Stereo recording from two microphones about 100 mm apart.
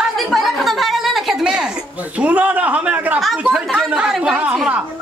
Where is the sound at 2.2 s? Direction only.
15° right (ahead or behind).